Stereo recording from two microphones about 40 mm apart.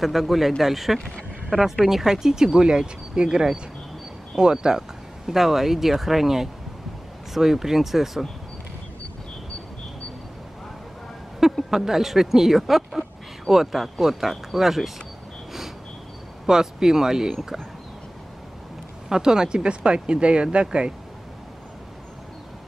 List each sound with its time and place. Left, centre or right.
0.0 s speech: centre
1.5 s speech: centre
1.9 s speech: centre
11.5 s speech: centre
16.4 s speech: centre
19.0 s speech: centre